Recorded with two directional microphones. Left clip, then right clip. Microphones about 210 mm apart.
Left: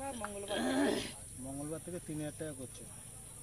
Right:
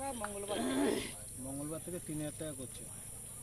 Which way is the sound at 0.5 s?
40° left (ahead or behind).